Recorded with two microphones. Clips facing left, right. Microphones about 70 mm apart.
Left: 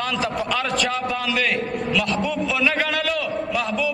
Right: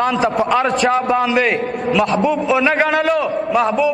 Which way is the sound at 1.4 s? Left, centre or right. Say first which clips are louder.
Right 5 dB; right.